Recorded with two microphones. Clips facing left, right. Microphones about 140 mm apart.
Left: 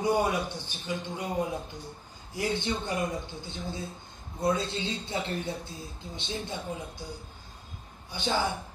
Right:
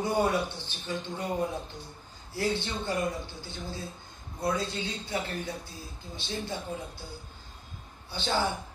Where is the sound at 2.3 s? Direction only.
15° left (ahead or behind).